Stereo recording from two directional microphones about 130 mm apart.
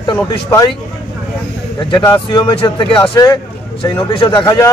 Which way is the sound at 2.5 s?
40° left (ahead or behind).